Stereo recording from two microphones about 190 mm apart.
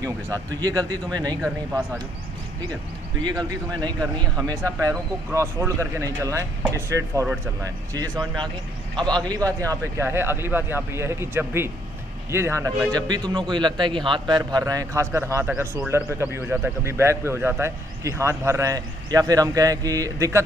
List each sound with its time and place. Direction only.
0.0 s speech: 20° right (ahead or behind)
3.3 s speech: 20° right (ahead or behind)